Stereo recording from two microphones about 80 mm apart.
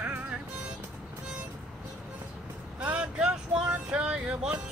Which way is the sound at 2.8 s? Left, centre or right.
Centre.